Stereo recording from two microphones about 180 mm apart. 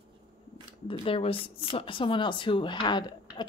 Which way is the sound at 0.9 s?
30° left (ahead or behind).